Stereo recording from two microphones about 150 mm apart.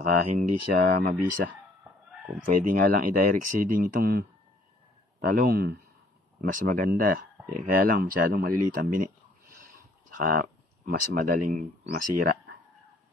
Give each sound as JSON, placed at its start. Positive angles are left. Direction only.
{"t": 0.0, "sound": "speech", "side_deg": -70}
{"t": 2.4, "sound": "speech", "side_deg": -65}
{"t": 6.4, "sound": "speech", "side_deg": -65}
{"t": 10.1, "sound": "speech", "side_deg": -65}